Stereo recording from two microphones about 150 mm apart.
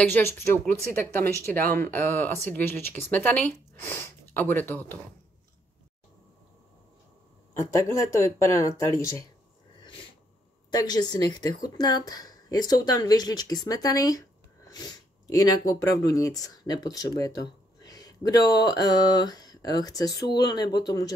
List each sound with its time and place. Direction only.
0.1 s speech: 15° left (ahead or behind)
7.5 s speech: 20° left (ahead or behind)
10.7 s speech: 25° left (ahead or behind)